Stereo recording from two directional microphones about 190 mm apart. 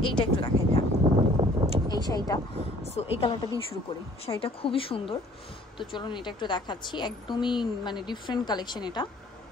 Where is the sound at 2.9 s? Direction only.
30° left (ahead or behind).